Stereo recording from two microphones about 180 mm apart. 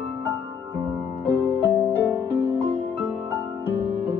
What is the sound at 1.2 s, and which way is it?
Music, 10° right (ahead or behind).